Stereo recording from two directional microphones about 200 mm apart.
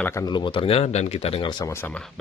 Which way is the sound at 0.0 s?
15° left (ahead or behind).